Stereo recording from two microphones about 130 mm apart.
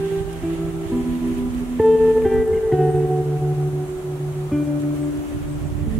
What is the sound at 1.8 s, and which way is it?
Music, centre (ahead or behind).